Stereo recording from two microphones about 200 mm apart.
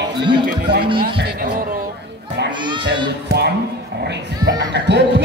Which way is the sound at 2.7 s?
25° right (ahead or behind).